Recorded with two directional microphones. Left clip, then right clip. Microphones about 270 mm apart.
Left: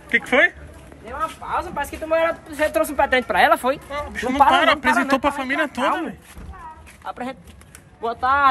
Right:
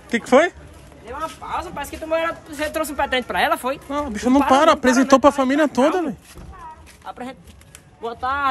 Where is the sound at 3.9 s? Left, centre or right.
Right.